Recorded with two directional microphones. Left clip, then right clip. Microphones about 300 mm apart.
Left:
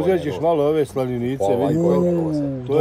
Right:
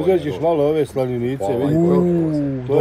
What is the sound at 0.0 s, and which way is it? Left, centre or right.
Speech, centre.